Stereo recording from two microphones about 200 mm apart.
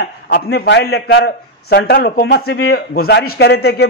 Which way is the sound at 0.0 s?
55° left (ahead or behind).